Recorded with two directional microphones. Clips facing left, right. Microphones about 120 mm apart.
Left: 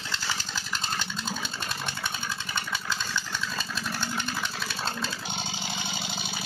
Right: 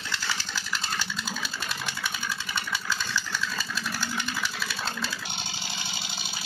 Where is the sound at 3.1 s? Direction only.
25° left (ahead or behind).